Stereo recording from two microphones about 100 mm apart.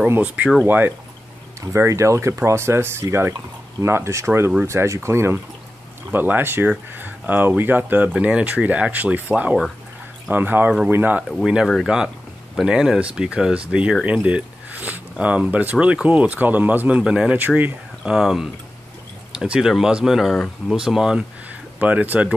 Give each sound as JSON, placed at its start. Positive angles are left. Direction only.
{"t": 0.1, "sound": "speech", "side_deg": -15}
{"t": 11.2, "sound": "speech", "side_deg": 0}
{"t": 11.9, "sound": "speech", "side_deg": -10}
{"t": 18.1, "sound": "speech", "side_deg": -5}
{"t": 21.7, "sound": "speech", "side_deg": -15}